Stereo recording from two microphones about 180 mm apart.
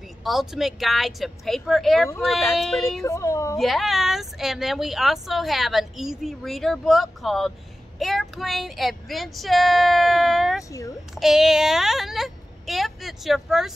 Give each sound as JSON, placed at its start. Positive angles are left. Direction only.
{"t": 0.2, "sound": "speech", "side_deg": 0}
{"t": 3.0, "sound": "a woman's voice", "side_deg": 15}
{"t": 3.5, "sound": "speech", "side_deg": 0}